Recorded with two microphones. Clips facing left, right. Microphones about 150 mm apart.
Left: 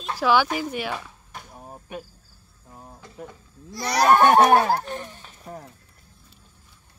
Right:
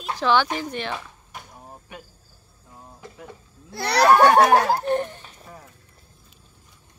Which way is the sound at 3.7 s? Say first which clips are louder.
Right 2 dB; 65° right (ahead or behind).